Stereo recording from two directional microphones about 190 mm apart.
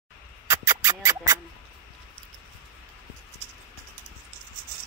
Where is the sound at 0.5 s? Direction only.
15° right (ahead or behind).